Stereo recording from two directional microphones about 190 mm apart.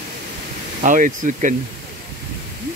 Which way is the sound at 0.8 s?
45° right (ahead or behind).